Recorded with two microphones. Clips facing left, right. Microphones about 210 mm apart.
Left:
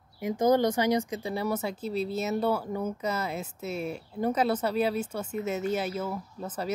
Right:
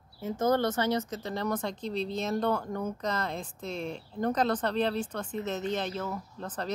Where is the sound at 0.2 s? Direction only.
15° left (ahead or behind).